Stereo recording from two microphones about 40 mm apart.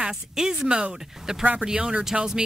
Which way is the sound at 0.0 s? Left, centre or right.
Centre.